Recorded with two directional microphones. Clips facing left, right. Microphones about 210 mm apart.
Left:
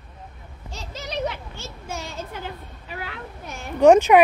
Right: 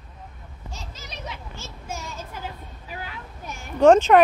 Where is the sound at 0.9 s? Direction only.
70° left (ahead or behind).